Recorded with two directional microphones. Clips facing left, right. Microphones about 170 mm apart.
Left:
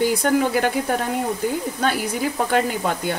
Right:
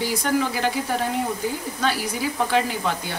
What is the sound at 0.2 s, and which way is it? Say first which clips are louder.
Speech: left 4 dB; 50° left (ahead or behind).